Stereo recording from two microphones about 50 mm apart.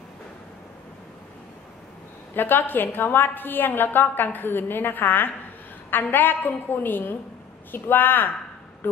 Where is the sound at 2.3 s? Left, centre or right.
Left.